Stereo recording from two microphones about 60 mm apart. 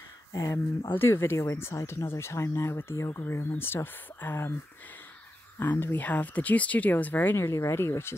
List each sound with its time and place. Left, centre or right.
0.5 s speech: left
5.6 s speech: left
7.7 s speech: left